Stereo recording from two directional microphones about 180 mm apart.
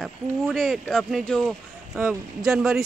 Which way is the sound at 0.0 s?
Centre (ahead or behind).